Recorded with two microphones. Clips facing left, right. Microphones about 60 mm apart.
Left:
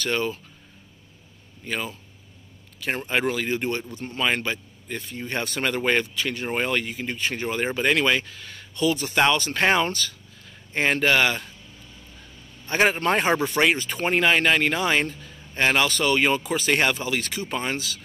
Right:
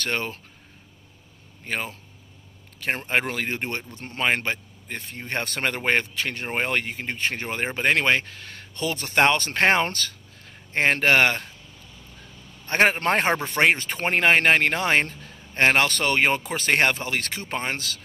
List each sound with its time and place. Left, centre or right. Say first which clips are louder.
0.0 s speech: left 2 dB; right
1.6 s speech: even; right
12.6 s a man's voice: right 1 dB; right